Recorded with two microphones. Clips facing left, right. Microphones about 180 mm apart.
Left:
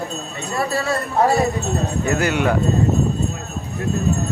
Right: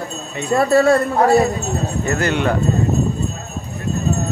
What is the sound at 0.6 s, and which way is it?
Speech, 55° right (ahead or behind).